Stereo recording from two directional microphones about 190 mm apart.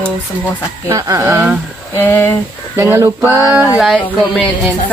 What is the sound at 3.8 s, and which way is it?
Speech, 5° left (ahead or behind).